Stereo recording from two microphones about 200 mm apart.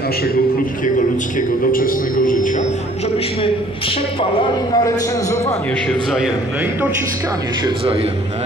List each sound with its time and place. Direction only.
1.7 s speech: 45° left (ahead or behind)
4.2 s a man's voice: 20° left (ahead or behind)
5.9 s a man's voice: centre (ahead or behind)